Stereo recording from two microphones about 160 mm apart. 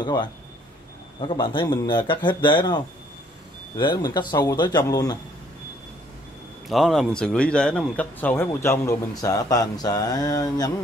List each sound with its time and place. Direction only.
0.0 s speech: 25° left (ahead or behind)
6.7 s speech: centre (ahead or behind); by 10.7 s 25° left (ahead or behind)